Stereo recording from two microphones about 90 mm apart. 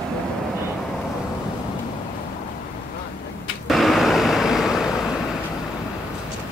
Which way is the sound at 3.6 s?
Centre (ahead or behind).